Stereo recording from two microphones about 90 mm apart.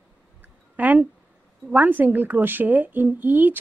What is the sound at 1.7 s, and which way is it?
A woman's voice, 20° right (ahead or behind).